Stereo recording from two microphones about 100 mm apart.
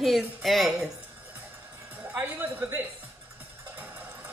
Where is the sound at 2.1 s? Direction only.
20° right (ahead or behind).